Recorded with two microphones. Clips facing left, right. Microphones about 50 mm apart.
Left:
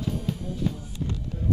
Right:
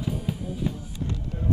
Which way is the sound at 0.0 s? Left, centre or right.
Centre.